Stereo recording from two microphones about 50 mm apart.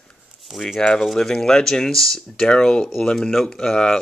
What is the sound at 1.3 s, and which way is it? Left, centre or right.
Speech, centre.